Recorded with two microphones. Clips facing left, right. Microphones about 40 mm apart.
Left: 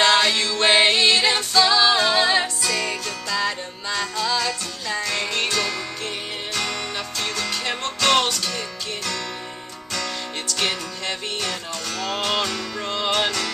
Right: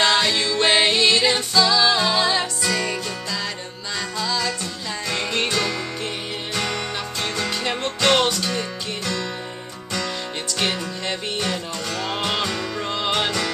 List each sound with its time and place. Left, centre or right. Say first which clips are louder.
0.0 s music: left 1 dB; centre
2.6 s music: right 1 dB; centre
5.0 s music: right 3 dB; centre
10.5 s music: right 1 dB; centre